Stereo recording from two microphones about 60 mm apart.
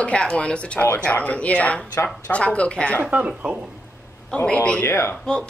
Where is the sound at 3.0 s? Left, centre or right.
Right.